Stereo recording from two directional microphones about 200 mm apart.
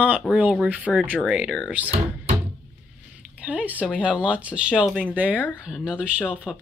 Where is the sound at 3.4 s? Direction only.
5° right (ahead or behind).